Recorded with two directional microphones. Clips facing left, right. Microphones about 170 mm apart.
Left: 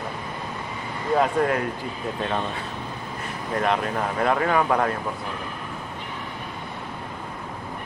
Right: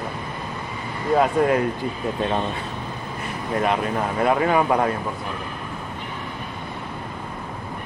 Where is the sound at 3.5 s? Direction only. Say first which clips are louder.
Right 2 dB; 10° right (ahead or behind).